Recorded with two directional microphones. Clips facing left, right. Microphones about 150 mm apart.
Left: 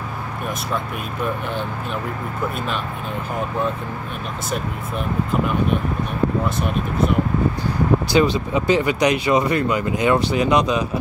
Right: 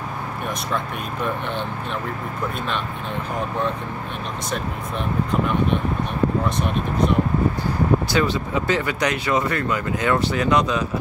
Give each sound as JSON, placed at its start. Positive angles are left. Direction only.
{"t": 8.1, "sound": "speech", "side_deg": 20}